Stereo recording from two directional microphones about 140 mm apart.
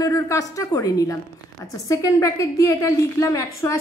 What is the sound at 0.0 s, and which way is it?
A woman's voice, 25° left (ahead or behind).